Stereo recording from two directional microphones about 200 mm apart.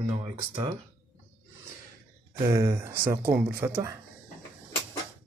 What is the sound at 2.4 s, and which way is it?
Speech, 15° right (ahead or behind).